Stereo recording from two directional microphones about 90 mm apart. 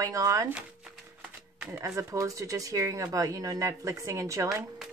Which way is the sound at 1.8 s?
35° right (ahead or behind).